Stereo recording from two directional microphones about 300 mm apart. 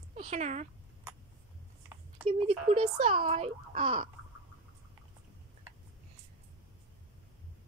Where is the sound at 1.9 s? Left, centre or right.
Centre.